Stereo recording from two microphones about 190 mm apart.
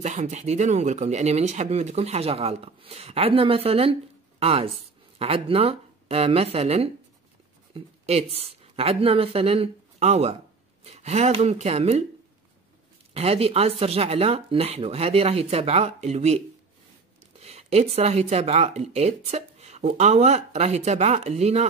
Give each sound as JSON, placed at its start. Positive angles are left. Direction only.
{"t": 0.0, "sound": "a woman's voice", "side_deg": -40}
{"t": 13.1, "sound": "speech", "side_deg": -30}
{"t": 17.4, "sound": "speech", "side_deg": -35}